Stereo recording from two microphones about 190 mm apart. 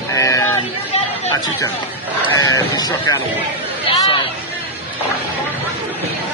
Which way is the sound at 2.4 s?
20° left (ahead or behind).